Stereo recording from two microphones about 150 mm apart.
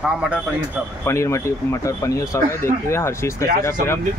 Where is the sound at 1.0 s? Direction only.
20° left (ahead or behind).